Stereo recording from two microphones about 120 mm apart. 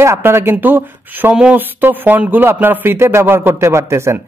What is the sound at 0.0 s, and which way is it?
A woman's voice, 20° right (ahead or behind).